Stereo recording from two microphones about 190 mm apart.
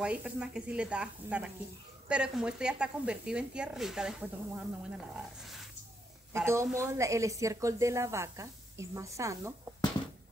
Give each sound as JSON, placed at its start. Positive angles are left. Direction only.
{"t": 0.0, "sound": "speech", "side_deg": -5}
{"t": 6.3, "sound": "a woman's voice", "side_deg": -15}